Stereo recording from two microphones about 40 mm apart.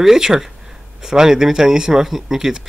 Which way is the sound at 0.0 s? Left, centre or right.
Centre.